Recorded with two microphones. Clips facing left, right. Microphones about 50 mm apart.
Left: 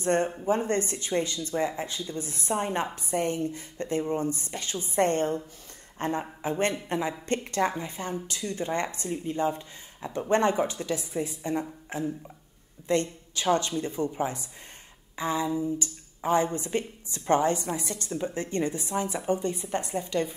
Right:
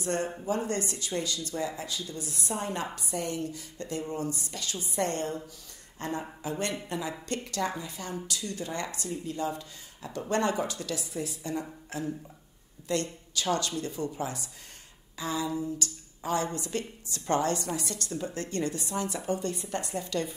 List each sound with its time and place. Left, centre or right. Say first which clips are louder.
0.0 s speech: left 5 dB; left